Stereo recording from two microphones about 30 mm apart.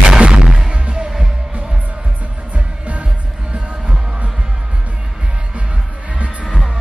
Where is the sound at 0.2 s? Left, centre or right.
Right.